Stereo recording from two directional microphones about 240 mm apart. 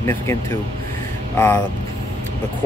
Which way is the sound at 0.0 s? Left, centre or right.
Centre.